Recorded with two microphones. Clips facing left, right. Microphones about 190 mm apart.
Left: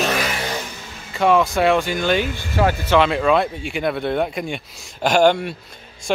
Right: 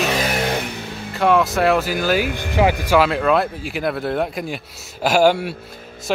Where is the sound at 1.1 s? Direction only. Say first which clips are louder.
Even; centre (ahead or behind).